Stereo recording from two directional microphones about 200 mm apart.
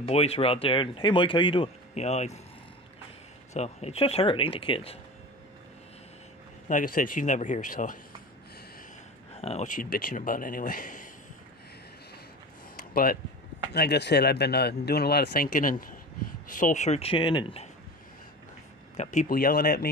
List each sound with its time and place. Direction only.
0.0 s speech: 30° left (ahead or behind)
3.5 s speech: 30° left (ahead or behind)
6.7 s speech: 40° left (ahead or behind)
9.4 s speech: 30° left (ahead or behind)
9.8 s speech: 45° left (ahead or behind)
12.9 s speech: 45° left (ahead or behind); by 17.6 s 25° left (ahead or behind)
18.9 s speech: 40° left (ahead or behind)